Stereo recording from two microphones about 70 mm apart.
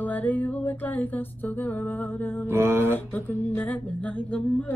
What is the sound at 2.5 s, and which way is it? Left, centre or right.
Speech, right.